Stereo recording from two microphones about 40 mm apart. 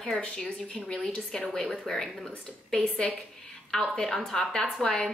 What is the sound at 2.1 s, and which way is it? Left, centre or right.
A woman's voice, centre.